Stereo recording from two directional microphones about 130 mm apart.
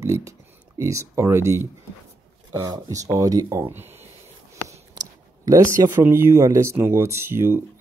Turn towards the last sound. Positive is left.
turn(degrees=-20)  # may be behind; listen again after turning